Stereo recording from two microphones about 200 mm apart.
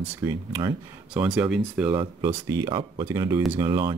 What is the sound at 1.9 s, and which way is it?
Speech, 20° right (ahead or behind).